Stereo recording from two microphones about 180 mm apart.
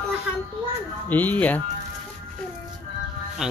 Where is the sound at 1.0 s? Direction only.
10° left (ahead or behind).